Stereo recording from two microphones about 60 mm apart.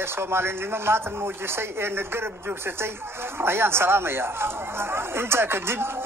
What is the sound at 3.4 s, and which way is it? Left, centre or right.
Speech, right.